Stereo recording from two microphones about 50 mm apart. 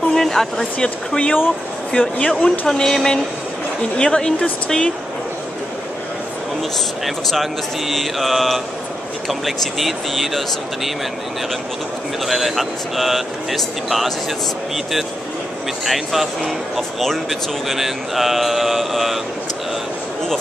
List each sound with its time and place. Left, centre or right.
0.1 s a sound: centre
0.7 s speech: left
7.1 s speech: centre
12.3 s speech: centre
15.8 s speech: centre